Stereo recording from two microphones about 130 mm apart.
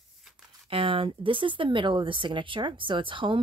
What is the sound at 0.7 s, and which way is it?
Speech, 45° right (ahead or behind).